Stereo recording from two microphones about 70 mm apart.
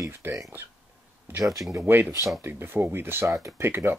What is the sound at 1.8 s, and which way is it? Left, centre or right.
Speech, right.